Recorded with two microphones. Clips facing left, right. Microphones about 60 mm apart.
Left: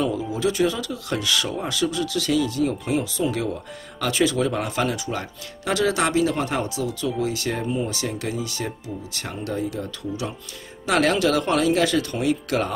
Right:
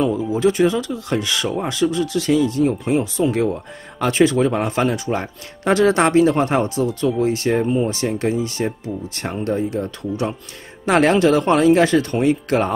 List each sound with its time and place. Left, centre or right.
0.3 s speech: right